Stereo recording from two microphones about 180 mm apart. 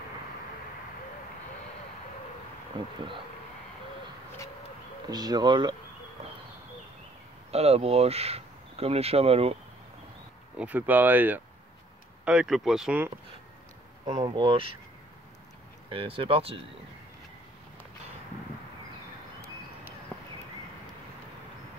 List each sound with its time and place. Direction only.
2.8 s speech: 25° right (ahead or behind)
5.1 s speech: 20° right (ahead or behind)
7.5 s speech: 35° right (ahead or behind)
10.6 s speech: 10° right (ahead or behind)
14.0 s speech: 30° right (ahead or behind)
15.9 s speech: 30° right (ahead or behind)